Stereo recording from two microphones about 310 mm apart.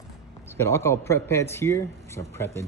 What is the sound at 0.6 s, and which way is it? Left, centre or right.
Speech, centre.